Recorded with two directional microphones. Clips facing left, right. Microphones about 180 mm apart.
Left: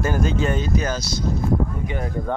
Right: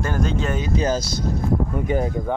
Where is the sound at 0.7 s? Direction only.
30° right (ahead or behind).